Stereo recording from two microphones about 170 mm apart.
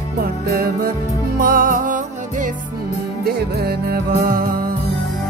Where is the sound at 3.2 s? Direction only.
65° right (ahead or behind).